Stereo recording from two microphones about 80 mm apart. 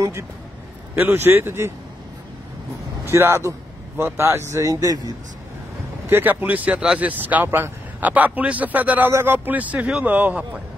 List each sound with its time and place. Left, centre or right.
0.9 s speech: right
3.1 s a man's voice: right
6.0 s speech: right